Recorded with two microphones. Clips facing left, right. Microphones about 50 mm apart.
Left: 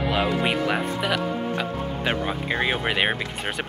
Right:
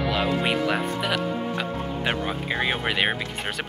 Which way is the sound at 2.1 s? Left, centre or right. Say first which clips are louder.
Left 1 dB; centre.